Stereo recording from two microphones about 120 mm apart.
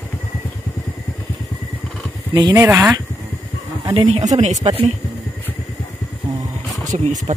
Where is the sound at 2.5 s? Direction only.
20° right (ahead or behind).